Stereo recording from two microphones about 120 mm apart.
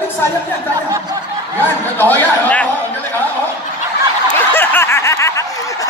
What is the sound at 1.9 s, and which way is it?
Speech, 15° left (ahead or behind).